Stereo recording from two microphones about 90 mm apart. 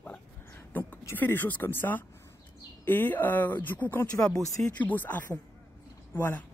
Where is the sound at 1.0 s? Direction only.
25° left (ahead or behind).